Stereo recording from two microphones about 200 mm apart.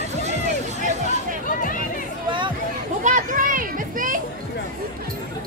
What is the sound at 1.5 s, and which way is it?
Music, 45° left (ahead or behind).